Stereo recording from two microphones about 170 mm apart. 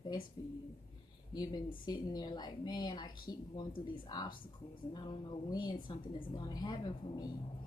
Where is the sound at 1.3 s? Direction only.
25° left (ahead or behind).